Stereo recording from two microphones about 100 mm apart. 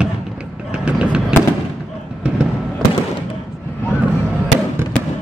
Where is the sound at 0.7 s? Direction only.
10° right (ahead or behind).